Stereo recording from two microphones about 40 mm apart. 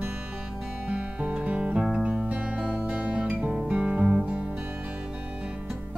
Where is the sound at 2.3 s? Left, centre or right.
Right.